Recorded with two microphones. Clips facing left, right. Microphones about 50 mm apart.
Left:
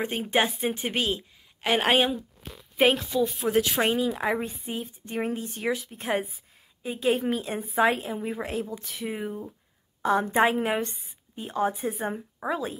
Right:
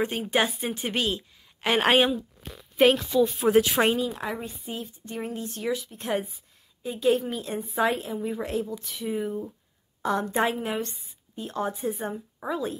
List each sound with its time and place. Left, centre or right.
0.2 s a woman's voice: centre
1.6 s a woman's voice: centre
3.3 s speech: centre
3.9 s a woman's voice: centre
4.2 s a woman's voice: left; by 9.5 s centre
10.2 s a woman's voice: left